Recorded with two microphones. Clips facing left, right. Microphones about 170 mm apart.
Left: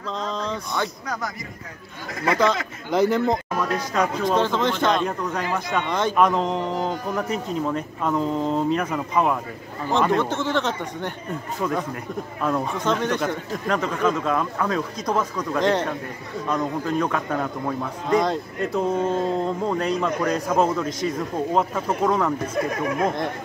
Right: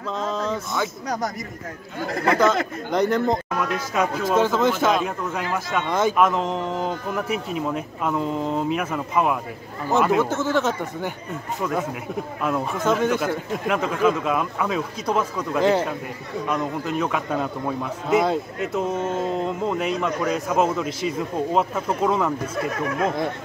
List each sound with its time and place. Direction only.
0.2 s speech: 5° right (ahead or behind)
1.0 s speech: 35° right (ahead or behind)
2.0 s speech: 55° right (ahead or behind)
2.9 s a man's voice: centre (ahead or behind)